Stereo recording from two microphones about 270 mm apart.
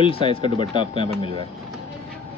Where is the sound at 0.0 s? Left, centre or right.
Centre.